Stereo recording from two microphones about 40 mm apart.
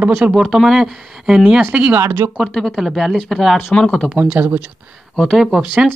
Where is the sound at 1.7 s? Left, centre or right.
Right.